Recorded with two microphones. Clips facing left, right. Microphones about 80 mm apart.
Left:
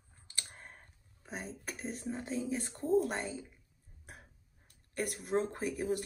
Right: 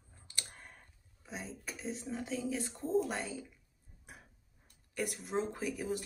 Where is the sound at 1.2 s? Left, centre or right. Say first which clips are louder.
Left 2 dB; left.